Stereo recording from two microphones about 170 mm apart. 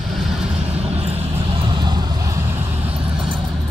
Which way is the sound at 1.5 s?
25° right (ahead or behind).